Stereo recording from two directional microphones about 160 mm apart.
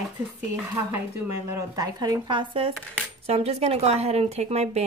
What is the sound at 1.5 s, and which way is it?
Speech, 25° right (ahead or behind).